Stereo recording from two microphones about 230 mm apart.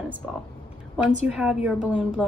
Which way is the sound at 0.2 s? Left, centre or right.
Centre.